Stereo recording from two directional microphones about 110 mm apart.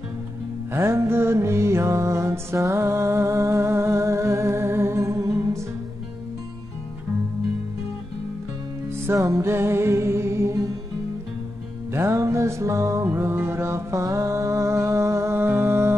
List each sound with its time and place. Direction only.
0.7 s music: 25° right (ahead or behind)
9.0 s music: 25° right (ahead or behind)
11.9 s music: 25° right (ahead or behind)